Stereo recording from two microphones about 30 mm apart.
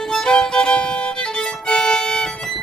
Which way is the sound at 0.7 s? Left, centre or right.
Left.